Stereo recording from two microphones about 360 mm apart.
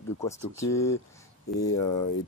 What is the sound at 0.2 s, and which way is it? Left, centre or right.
Speech, centre.